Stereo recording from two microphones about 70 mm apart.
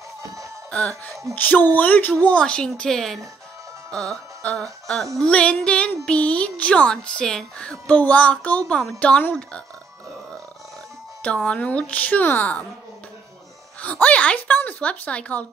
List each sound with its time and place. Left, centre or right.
0.7 s speech: centre
1.3 s speech: left
2.2 s speech: centre
3.9 s music: centre
5.2 s speech: centre
11.2 s speech: centre
13.7 s a woman's voice: left